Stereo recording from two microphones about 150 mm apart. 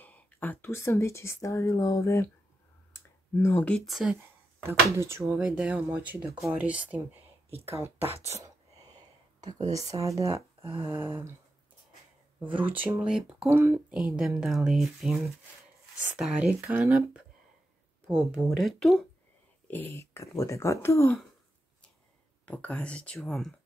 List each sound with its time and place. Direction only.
0.0 s speech: 10° left (ahead or behind)
4.6 s speech: 15° right (ahead or behind)
9.7 s speech: 20° right (ahead or behind)
10.6 s a sound: 35° right (ahead or behind)
10.9 s speech: 15° right (ahead or behind)
12.4 s speech: 10° right (ahead or behind)
13.5 s speech: 15° right (ahead or behind)
16.2 s speech: 5° right (ahead or behind)
18.0 s speech: 5° right (ahead or behind)
19.7 s speech: 15° left (ahead or behind)
22.5 s speech: 10° left (ahead or behind)